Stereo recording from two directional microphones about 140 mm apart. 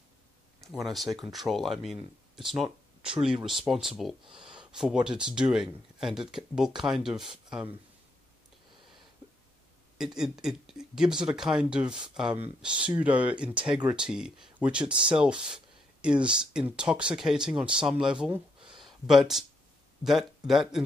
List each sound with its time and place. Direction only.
0.7 s speech: centre (ahead or behind)
9.9 s speech: 5° right (ahead or behind)
18.6 s a sound: 35° right (ahead or behind)
19.0 s speech: centre (ahead or behind)